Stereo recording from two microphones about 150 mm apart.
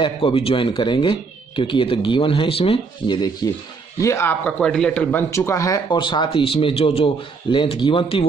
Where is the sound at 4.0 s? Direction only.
20° left (ahead or behind).